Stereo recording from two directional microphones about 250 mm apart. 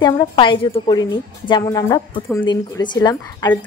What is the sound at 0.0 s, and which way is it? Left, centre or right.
A woman's voice, centre.